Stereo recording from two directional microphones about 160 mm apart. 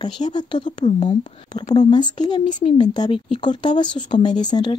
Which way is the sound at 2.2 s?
35° left (ahead or behind).